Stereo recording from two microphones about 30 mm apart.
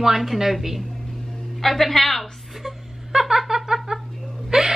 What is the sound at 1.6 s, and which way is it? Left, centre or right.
Speech, centre.